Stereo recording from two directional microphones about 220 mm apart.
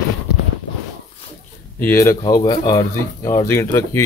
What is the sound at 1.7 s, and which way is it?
Speech, 10° left (ahead or behind).